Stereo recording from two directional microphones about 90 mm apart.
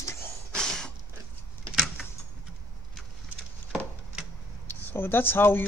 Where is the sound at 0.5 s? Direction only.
5° left (ahead or behind).